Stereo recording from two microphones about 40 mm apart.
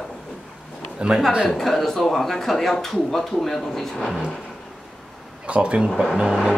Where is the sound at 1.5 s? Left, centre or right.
Centre.